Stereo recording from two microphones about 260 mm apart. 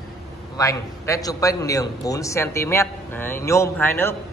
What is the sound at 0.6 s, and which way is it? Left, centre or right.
A man's voice, centre.